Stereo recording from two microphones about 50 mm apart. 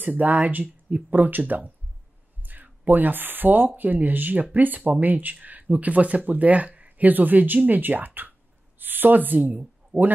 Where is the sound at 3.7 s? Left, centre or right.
Right.